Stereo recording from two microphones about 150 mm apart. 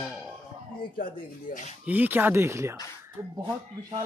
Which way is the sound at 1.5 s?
65° left (ahead or behind).